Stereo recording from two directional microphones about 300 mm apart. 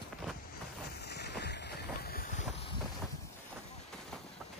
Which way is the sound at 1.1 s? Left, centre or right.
Left.